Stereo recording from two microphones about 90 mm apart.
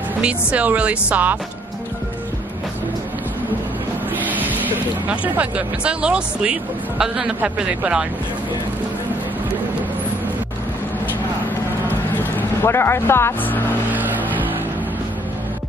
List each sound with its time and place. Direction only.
0.2 s speech: 15° right (ahead or behind)
4.2 s speech: 20° right (ahead or behind)
12.2 s speech: 25° left (ahead or behind)